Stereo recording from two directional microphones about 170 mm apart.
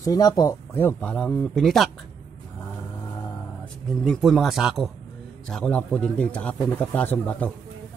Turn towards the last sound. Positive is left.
turn(degrees=10)  # may be behind; listen again after turning